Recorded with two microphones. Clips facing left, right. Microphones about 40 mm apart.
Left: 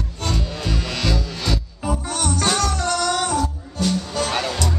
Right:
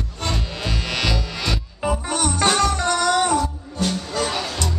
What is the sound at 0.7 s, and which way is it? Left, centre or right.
Music, right.